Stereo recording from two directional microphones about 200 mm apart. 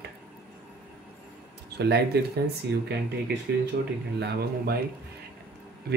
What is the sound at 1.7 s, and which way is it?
Speech, 55° right (ahead or behind).